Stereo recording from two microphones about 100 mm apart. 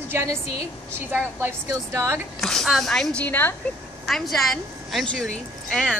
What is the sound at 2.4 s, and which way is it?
Speech, centre (ahead or behind).